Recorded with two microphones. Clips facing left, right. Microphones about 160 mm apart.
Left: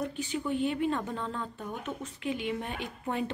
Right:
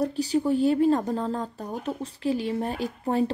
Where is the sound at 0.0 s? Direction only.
35° right (ahead or behind).